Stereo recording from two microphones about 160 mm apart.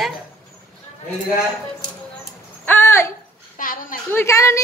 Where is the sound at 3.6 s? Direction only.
60° left (ahead or behind).